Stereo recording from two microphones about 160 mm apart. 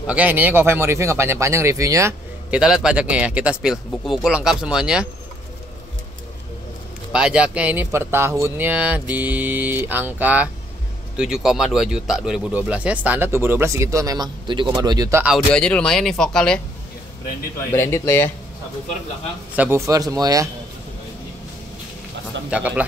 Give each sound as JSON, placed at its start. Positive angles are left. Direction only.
{"t": 0.0, "sound": "speech", "side_deg": -10}
{"t": 2.5, "sound": "speech", "side_deg": -5}
{"t": 7.1, "sound": "speech", "side_deg": -5}
{"t": 15.3, "sound": "speech", "side_deg": 5}
{"t": 17.7, "sound": "speech", "side_deg": 15}
{"t": 19.5, "sound": "speech", "side_deg": -10}
{"t": 19.9, "sound": "speech", "side_deg": -20}
{"t": 22.5, "sound": "speech", "side_deg": -10}